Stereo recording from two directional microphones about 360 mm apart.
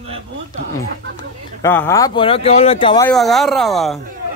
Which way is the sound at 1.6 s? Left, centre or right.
Centre.